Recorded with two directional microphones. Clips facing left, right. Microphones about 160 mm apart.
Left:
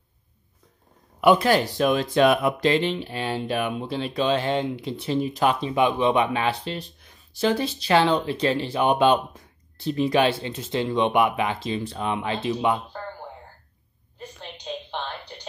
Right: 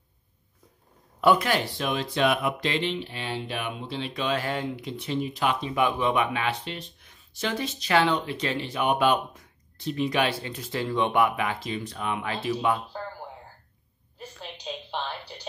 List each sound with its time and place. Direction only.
1.4 s speech: 40° left (ahead or behind)
5.8 s speech: 20° left (ahead or behind)
14.1 s a sound: 10° right (ahead or behind)